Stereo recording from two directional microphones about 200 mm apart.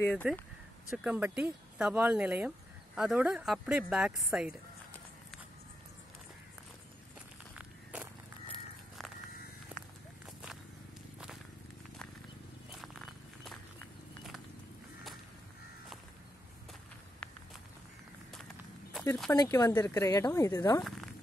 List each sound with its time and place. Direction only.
0.0 s speech: 5° left (ahead or behind)
0.9 s speech: 5° right (ahead or behind)
7.5 s a sound: 5° right (ahead or behind)
12.7 s cat: centre (ahead or behind)
19.3 s speech: 20° left (ahead or behind)